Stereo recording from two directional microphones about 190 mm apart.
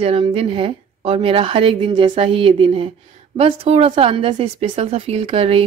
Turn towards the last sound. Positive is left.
turn(degrees=-30)  # may be behind; listen again after turning